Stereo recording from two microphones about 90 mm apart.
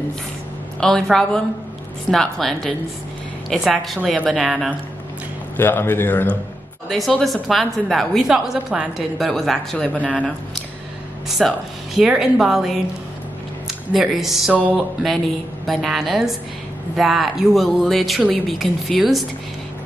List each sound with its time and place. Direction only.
0.7 s a woman's voice: 5° left (ahead or behind)
5.6 s a man's voice: 25° left (ahead or behind)
6.9 s a woman's voice: centre (ahead or behind)
11.2 s a woman's voice: centre (ahead or behind)
14.5 s a sound: 15° right (ahead or behind)
15.6 s a woman's voice: centre (ahead or behind)